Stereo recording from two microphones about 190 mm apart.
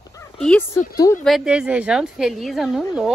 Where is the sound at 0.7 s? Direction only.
15° left (ahead or behind).